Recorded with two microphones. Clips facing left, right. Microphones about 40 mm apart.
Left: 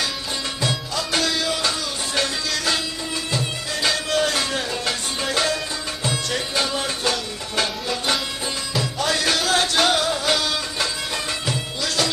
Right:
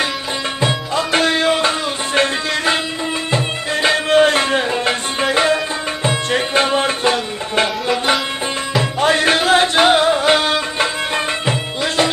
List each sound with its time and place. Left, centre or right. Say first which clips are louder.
0.6 s music: right 7 dB; right